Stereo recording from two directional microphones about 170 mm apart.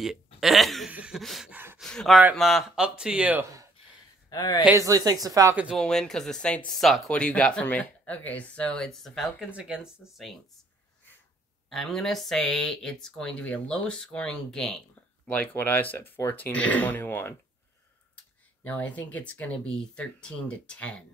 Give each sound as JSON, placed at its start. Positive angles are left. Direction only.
{"t": 0.0, "sound": "speech", "side_deg": 0}
{"t": 4.3, "sound": "speech", "side_deg": 20}
{"t": 4.6, "sound": "speech", "side_deg": -20}
{"t": 5.6, "sound": "speech", "side_deg": 0}
{"t": 11.7, "sound": "speech", "side_deg": 0}
{"t": 18.6, "sound": "speech", "side_deg": 10}